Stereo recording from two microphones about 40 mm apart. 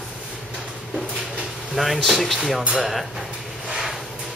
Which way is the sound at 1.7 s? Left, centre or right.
Centre.